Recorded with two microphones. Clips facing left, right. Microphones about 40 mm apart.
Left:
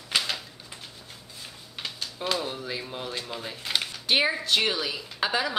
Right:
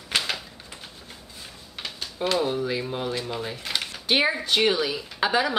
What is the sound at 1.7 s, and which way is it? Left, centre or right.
Speech, centre.